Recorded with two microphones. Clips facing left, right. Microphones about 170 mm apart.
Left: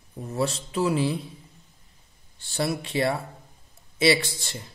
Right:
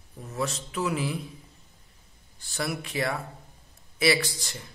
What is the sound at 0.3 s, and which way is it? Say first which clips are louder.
Speech: left 4 dB; 30° left (ahead or behind).